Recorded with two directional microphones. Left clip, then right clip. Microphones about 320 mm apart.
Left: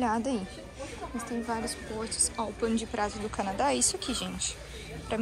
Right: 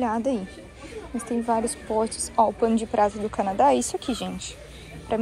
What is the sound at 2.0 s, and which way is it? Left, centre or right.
Speech, right.